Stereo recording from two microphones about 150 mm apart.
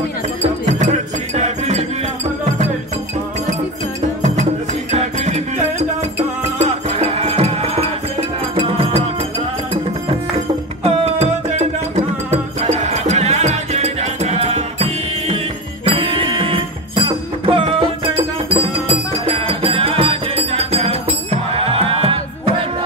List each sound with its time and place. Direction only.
0.7 s music: 50° right (ahead or behind)
4.9 s music: 50° right (ahead or behind)
10.8 s music: 45° right (ahead or behind)